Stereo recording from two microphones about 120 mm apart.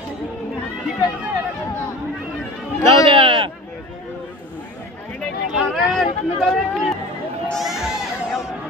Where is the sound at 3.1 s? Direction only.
45° right (ahead or behind).